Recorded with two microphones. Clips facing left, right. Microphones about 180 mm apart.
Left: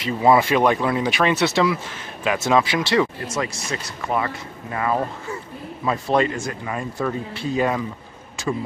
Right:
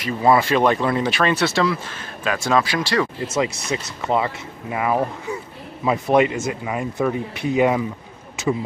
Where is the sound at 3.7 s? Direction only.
20° right (ahead or behind).